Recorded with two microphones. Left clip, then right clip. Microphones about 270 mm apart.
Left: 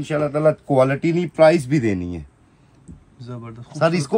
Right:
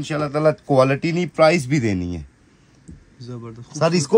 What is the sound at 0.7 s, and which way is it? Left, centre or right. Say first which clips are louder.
Speech: even; right.